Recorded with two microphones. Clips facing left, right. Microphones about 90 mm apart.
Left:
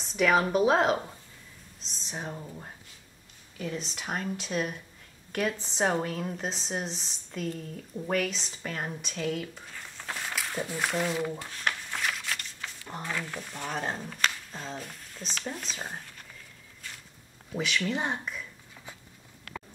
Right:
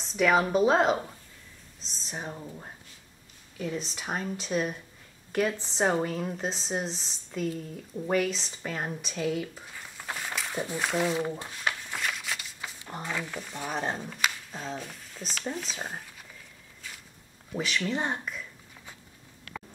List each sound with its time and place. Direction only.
0.1 s speech: centre (ahead or behind)
11.1 s speech: 20° right (ahead or behind)
11.5 s a sound: 5° right (ahead or behind)
13.3 s speech: centre (ahead or behind)
17.6 s speech: centre (ahead or behind)